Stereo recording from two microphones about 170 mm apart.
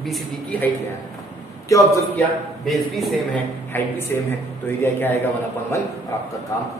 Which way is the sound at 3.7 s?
15° left (ahead or behind).